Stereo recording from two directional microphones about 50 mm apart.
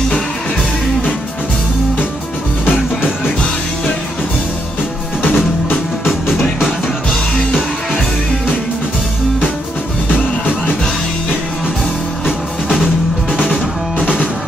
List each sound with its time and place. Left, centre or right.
5.2 s music: left
12.3 s music: centre